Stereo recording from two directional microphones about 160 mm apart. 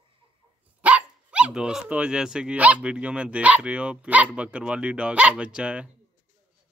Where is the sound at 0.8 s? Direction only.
10° right (ahead or behind).